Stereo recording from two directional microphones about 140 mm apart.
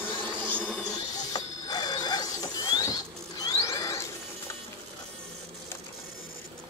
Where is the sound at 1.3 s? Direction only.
30° left (ahead or behind).